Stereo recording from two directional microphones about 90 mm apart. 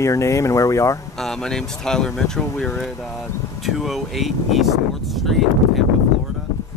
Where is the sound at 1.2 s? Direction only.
5° left (ahead or behind).